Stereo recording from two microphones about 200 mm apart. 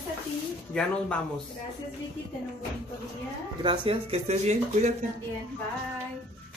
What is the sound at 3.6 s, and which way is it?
Speech, 25° right (ahead or behind).